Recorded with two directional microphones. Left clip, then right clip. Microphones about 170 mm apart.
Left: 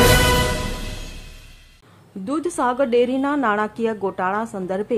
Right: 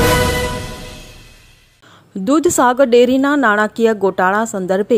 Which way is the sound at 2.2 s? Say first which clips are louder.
Right 9 dB; 35° right (ahead or behind).